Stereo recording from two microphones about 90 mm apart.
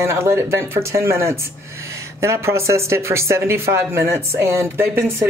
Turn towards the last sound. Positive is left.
turn(degrees=-25)  # may be behind; listen again after turning